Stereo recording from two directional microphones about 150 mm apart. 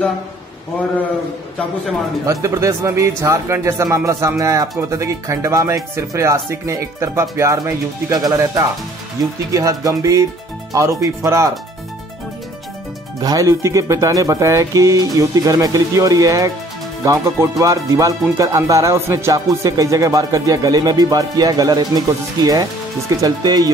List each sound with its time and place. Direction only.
2.2 s speech: 20° right (ahead or behind)
13.2 s speech: 25° right (ahead or behind)